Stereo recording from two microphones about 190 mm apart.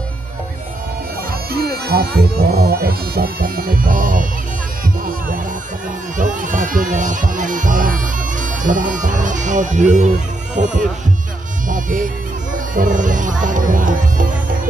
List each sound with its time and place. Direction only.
1.5 s speech: 55° right (ahead or behind)
6.1 s speech: 45° right (ahead or behind)